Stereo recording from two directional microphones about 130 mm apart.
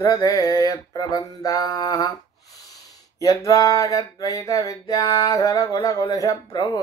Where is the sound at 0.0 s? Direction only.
30° left (ahead or behind).